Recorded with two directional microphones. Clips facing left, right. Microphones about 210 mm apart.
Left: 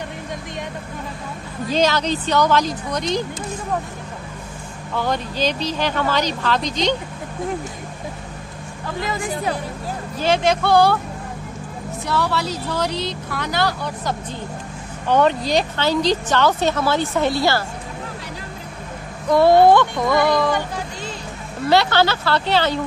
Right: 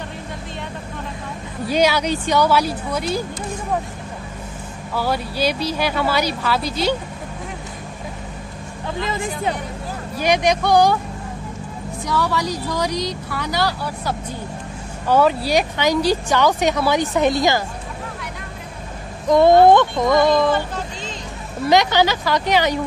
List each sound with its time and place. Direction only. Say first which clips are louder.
1.7 s speech: right 1 dB; 10° right (ahead or behind)
4.9 s speech: even; 5° right (ahead or behind)
9.0 s speech: even; 25° right (ahead or behind)
12.1 s speech: right 1 dB; 10° right (ahead or behind)
19.2 s speech: right 1 dB; 20° right (ahead or behind)
20.5 s speech: right 1 dB; 10° left (ahead or behind)
21.6 s speech: right 1 dB; 15° right (ahead or behind)